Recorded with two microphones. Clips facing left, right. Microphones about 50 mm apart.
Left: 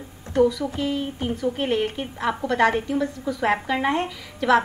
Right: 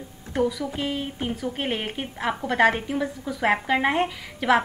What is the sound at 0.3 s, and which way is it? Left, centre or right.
A woman's voice, centre.